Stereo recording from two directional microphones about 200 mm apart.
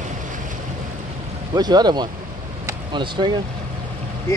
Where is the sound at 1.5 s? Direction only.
20° right (ahead or behind).